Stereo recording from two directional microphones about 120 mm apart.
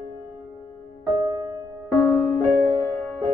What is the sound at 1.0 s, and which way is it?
Music, 35° right (ahead or behind).